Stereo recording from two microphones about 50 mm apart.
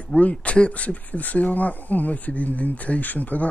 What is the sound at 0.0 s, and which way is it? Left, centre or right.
Speech, left.